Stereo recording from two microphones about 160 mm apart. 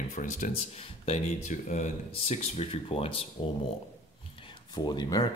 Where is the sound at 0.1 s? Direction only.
55° left (ahead or behind).